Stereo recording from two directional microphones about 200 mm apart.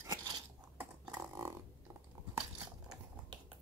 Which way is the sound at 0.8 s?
15° right (ahead or behind).